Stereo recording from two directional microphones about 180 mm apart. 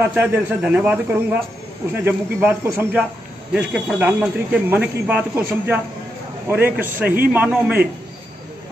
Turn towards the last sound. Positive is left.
turn(degrees=-10)  # may be behind; listen again after turning